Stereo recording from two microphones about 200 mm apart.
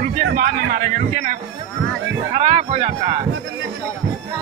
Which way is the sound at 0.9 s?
40° right (ahead or behind).